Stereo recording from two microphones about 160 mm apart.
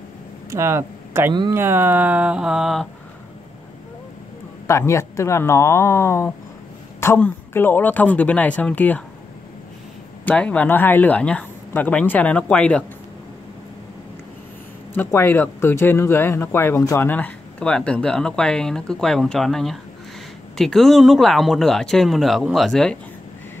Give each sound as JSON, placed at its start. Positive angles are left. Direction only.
{"t": 0.5, "sound": "speech", "side_deg": -15}
{"t": 4.6, "sound": "speech", "side_deg": 15}
{"t": 10.2, "sound": "speech", "side_deg": 5}
{"t": 15.0, "sound": "speech", "side_deg": 15}